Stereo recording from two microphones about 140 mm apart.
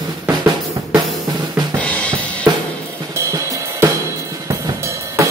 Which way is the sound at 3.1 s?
20° right (ahead or behind).